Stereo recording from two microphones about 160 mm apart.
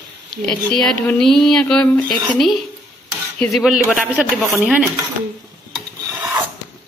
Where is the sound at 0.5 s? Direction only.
5° left (ahead or behind).